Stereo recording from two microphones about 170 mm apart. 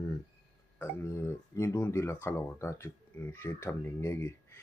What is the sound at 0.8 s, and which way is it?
Speech, 15° left (ahead or behind).